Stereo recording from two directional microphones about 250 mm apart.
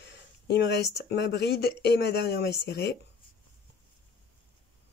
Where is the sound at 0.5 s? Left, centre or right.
Left.